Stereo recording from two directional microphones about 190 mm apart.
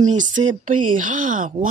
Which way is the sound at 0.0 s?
40° right (ahead or behind).